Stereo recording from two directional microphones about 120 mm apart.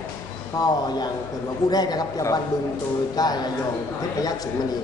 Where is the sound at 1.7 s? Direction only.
35° left (ahead or behind).